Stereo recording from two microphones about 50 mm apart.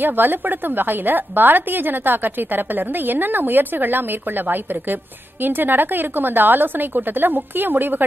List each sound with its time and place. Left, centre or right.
0.0 s a woman's voice: right